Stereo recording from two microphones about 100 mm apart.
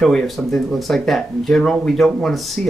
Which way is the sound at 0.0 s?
5° left (ahead or behind).